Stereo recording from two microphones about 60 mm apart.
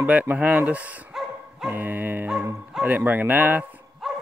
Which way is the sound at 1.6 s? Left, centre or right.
Right.